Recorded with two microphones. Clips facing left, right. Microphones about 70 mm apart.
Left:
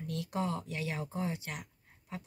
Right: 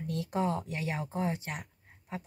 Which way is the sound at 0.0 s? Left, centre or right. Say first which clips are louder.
Right 4 dB; right.